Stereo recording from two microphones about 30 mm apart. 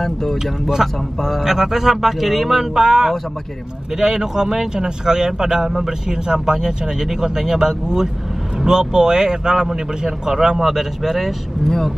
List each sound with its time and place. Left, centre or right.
0.0 s speech: centre
0.8 s speech: centre
10.6 s speech: centre
11.6 s speech: centre